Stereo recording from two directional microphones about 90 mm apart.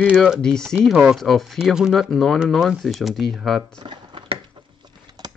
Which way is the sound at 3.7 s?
60° right (ahead or behind).